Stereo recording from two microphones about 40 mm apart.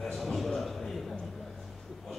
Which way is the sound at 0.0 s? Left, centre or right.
Centre.